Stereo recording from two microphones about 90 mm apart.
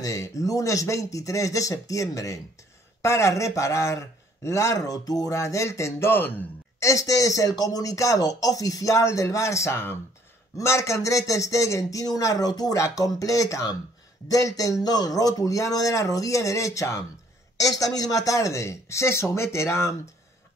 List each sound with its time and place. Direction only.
0.0 s a man's voice: 35° left (ahead or behind)
6.8 s a man's voice: 35° left (ahead or behind)